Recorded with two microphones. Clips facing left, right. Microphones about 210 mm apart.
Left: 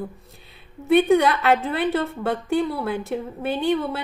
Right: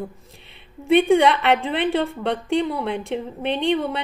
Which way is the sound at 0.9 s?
Centre (ahead or behind).